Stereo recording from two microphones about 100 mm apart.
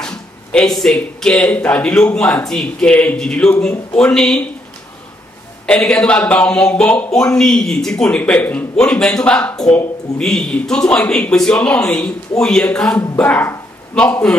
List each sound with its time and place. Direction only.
0.0 s speech: 10° left (ahead or behind)
5.7 s speech: 10° left (ahead or behind)
13.2 s a sound: 20° left (ahead or behind)